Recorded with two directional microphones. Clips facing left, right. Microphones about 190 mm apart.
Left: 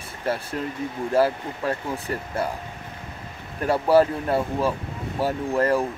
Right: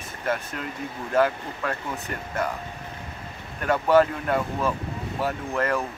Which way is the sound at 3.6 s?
35° left (ahead or behind).